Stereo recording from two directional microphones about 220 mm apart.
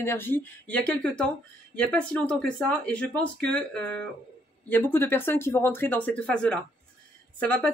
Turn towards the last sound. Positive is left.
turn(degrees=5)  # may be behind; listen again after turning